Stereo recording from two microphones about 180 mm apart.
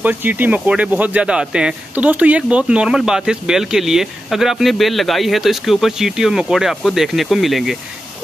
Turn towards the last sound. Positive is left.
turn(degrees=0)  # may be behind; listen again after turning